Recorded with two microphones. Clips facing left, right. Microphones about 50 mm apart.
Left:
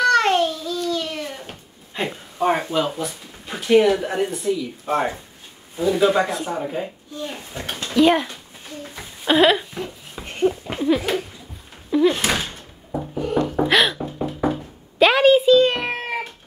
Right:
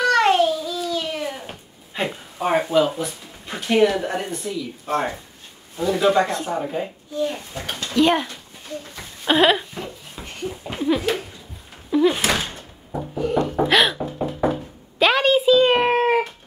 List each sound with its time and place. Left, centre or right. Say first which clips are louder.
0.0 s babbling: even; centre
5.8 s speech: even; centre
8.8 s a sound: left 2 dB; centre
9.2 s a sound: left 1 dB; centre
11.9 s door: even; centre
13.6 s knock: even; centre
15.7 s cat: right 8 dB; right